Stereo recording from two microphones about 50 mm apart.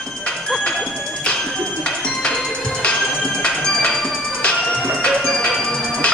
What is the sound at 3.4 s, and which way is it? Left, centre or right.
Music, centre.